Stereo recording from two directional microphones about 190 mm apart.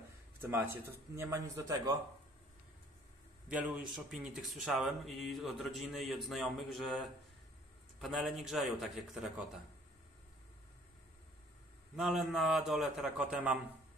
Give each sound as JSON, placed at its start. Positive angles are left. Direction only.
{"t": 0.4, "sound": "a man's voice", "side_deg": -10}
{"t": 3.4, "sound": "speech", "side_deg": -5}
{"t": 12.0, "sound": "speech", "side_deg": 0}